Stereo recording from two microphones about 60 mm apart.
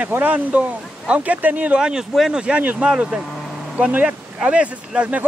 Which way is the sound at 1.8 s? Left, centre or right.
Centre.